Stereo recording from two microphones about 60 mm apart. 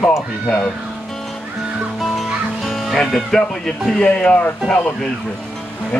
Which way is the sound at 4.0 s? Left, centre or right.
Centre.